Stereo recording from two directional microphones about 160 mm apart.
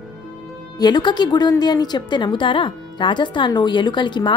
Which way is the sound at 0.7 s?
25° left (ahead or behind).